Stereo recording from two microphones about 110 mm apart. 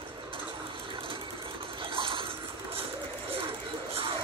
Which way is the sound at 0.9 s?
55° right (ahead or behind).